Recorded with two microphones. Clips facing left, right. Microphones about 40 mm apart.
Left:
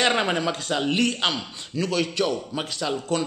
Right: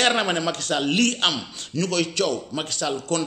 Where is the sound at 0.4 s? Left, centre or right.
Centre.